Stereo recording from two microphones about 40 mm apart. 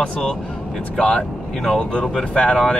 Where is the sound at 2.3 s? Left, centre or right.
Left.